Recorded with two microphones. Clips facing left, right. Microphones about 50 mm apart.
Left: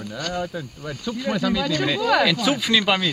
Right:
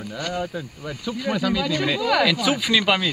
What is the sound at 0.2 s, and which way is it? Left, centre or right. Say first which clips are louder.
Speech: even; centre.